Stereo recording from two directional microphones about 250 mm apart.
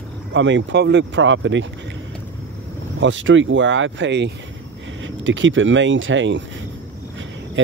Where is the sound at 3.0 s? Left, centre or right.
Right.